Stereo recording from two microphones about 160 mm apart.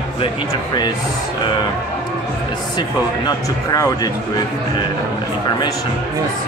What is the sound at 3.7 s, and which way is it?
Speech, 20° left (ahead or behind).